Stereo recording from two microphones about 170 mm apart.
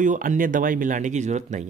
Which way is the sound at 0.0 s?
50° right (ahead or behind).